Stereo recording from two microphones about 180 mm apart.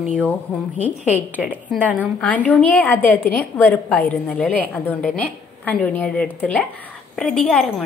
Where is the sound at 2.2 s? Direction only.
10° left (ahead or behind).